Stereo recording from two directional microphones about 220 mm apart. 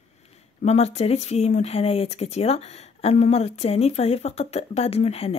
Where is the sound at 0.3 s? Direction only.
30° left (ahead or behind).